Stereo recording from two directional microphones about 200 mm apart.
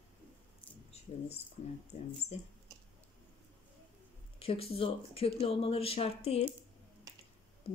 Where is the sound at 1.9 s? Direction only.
35° left (ahead or behind).